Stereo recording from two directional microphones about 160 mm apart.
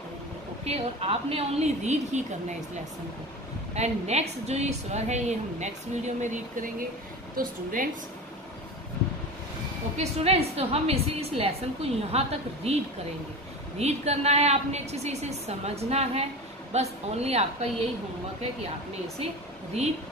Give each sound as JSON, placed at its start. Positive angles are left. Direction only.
{"t": 0.7, "sound": "a woman's voice", "side_deg": -40}
{"t": 3.7, "sound": "a woman's voice", "side_deg": -45}
{"t": 9.9, "sound": "a woman's voice", "side_deg": -40}
{"t": 13.7, "sound": "a woman's voice", "side_deg": -40}